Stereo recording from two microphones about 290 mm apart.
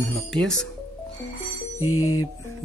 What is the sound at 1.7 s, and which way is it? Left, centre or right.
Music, left.